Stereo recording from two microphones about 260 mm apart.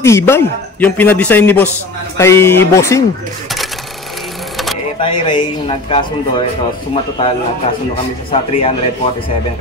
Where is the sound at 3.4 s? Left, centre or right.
Centre.